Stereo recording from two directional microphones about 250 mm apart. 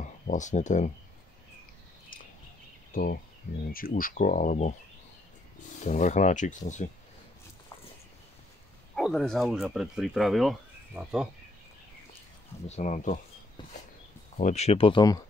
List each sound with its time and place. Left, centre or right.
0.3 s speech: left
2.9 s speech: left
5.9 s speech: left
8.9 s speech: centre
12.6 s speech: left
14.3 s speech: left